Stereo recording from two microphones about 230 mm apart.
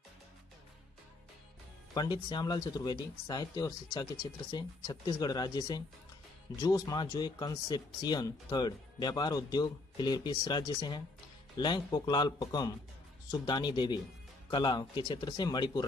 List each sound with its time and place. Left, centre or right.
2.0 s speech: centre